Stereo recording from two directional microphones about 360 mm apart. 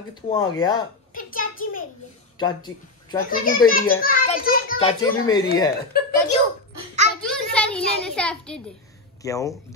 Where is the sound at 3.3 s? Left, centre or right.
Left.